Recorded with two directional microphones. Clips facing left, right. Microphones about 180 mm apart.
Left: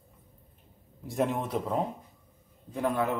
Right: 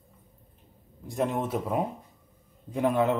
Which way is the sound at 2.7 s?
15° right (ahead or behind).